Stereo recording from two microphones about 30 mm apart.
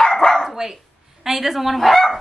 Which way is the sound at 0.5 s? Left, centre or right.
Centre.